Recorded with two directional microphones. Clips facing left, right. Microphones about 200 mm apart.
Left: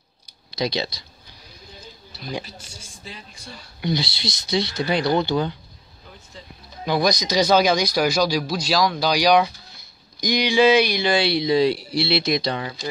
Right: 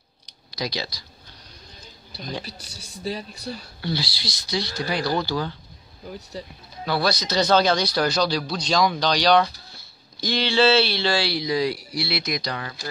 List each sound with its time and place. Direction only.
0.5 s speech: 25° left (ahead or behind)
2.4 s speech: 35° right (ahead or behind)
3.8 s speech: 20° left (ahead or behind)
6.8 s speech: 15° left (ahead or behind)